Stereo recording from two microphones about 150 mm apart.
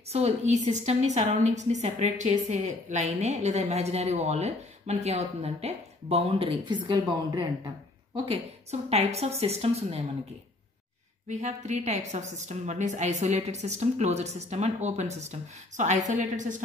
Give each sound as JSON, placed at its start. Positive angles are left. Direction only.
{"t": 0.1, "sound": "a woman's voice", "side_deg": -45}
{"t": 8.3, "sound": "a woman's voice", "side_deg": -45}
{"t": 11.2, "sound": "a woman's voice", "side_deg": -50}